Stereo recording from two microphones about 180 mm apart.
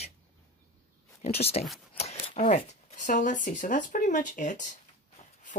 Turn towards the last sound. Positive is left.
turn(degrees=50)  # may be behind; listen again after turning